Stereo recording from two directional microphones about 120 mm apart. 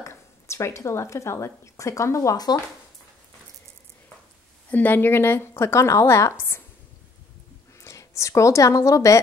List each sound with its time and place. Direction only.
0.0 s speech: 25° left (ahead or behind)
4.6 s a woman's voice: 15° left (ahead or behind)
7.8 s a woman's voice: 25° left (ahead or behind)